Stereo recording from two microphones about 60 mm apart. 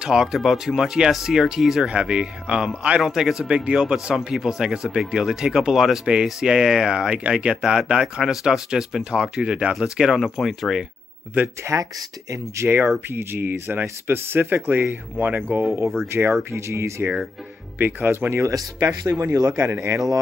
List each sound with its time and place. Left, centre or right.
0.0 s speech: centre
1.9 s speech: centre
11.4 s speech: right
12.6 s speech: right
15.8 s speech: centre
16.1 s speech: right
17.7 s speech: right
18.5 s speech: right
19.6 s speech: right